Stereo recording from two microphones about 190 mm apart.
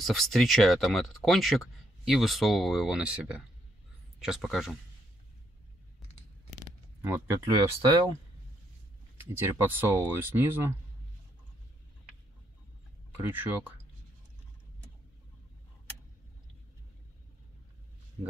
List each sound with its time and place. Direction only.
0.0 s speech: centre (ahead or behind)
7.0 s speech: 10° right (ahead or behind)
9.2 s speech: 10° right (ahead or behind)
13.2 s speech: 10° right (ahead or behind)